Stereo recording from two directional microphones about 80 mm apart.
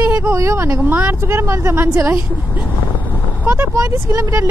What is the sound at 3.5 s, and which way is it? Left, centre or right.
Speech, right.